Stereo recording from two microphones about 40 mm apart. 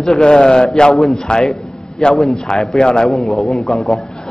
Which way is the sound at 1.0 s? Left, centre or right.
Centre.